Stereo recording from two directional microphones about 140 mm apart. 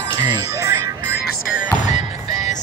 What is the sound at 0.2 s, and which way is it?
Music, 25° right (ahead or behind).